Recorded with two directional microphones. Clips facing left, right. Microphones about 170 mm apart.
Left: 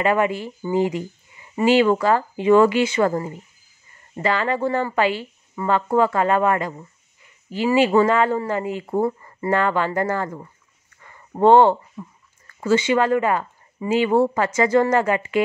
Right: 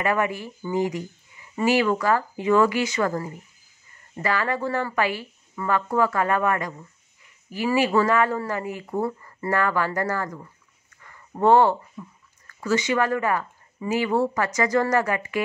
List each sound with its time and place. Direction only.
0.0 s speech: 25° left (ahead or behind)